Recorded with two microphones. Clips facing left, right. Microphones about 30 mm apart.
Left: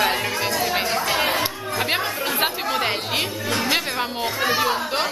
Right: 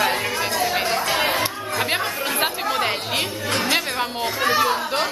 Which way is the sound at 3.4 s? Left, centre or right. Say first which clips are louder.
Right 1 dB; right.